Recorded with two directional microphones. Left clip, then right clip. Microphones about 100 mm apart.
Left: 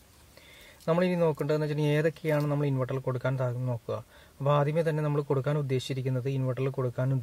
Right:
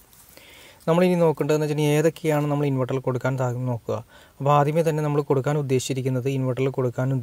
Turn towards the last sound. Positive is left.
turn(degrees=-25)  # may be behind; listen again after turning